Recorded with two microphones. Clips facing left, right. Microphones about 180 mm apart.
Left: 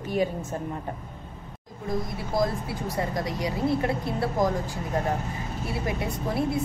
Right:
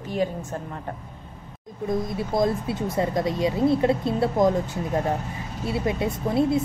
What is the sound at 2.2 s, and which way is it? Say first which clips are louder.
A woman's voice: right 3 dB; 25° right (ahead or behind).